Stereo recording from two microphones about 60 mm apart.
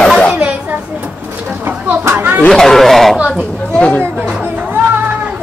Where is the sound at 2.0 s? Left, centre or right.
Right.